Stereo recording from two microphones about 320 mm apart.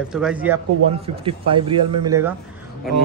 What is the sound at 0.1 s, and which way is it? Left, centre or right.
Speech, centre.